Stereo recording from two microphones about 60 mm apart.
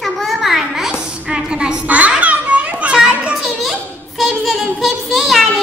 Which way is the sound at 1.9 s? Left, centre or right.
Right.